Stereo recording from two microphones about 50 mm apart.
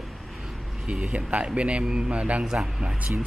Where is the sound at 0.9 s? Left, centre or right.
Right.